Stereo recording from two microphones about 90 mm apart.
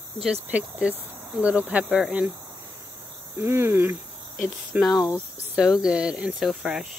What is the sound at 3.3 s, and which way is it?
Speech, 30° right (ahead or behind).